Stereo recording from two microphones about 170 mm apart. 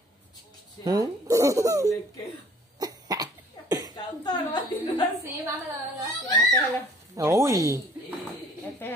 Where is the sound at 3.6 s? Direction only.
25° left (ahead or behind).